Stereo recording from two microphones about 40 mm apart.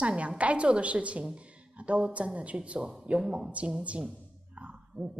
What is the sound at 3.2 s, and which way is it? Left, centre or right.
Speech, centre.